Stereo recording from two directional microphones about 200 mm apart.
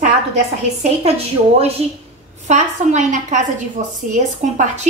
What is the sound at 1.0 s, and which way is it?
A woman's voice, 30° right (ahead or behind).